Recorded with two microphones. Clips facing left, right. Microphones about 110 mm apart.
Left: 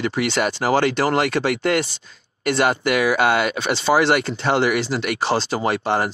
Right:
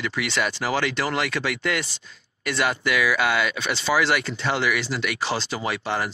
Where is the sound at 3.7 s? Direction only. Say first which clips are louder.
Left 5 dB; 35° left (ahead or behind).